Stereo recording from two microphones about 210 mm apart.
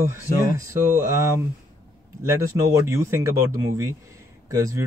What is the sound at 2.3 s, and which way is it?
Speech, 15° right (ahead or behind).